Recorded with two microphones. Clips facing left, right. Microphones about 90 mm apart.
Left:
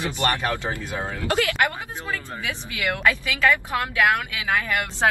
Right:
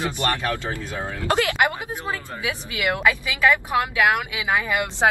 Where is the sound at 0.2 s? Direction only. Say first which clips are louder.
Left 3 dB; 20° left (ahead or behind).